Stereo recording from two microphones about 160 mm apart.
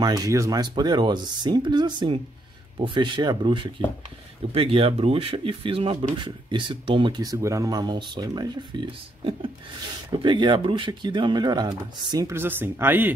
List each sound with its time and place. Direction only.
0.0 s speech: 25° right (ahead or behind)